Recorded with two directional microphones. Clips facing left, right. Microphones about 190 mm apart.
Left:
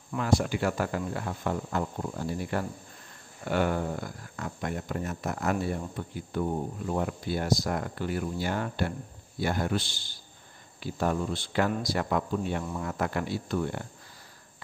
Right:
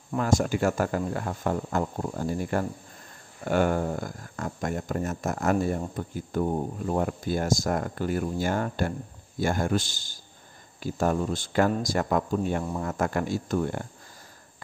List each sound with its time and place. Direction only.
0.1 s speech: 45° right (ahead or behind)